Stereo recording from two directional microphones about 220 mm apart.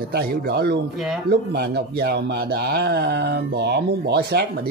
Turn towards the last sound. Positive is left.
turn(degrees=-45)  # may be behind; listen again after turning